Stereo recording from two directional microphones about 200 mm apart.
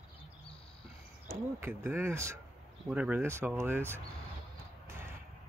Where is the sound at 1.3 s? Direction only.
10° right (ahead or behind).